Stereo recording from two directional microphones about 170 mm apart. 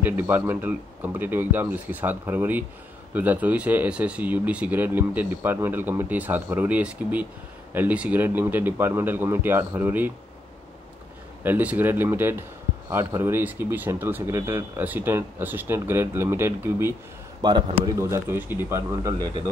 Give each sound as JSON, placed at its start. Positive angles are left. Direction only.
{"t": 0.0, "sound": "speech", "side_deg": -10}
{"t": 11.4, "sound": "speech", "side_deg": -10}
{"t": 17.4, "sound": "a man's voice", "side_deg": -25}